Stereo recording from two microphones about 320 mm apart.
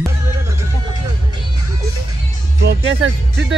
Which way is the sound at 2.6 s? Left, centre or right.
Right.